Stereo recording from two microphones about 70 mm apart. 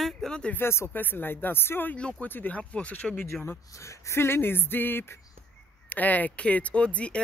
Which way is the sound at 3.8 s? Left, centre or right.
Left.